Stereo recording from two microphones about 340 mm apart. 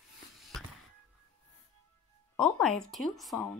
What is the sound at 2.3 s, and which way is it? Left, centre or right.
Speech, centre.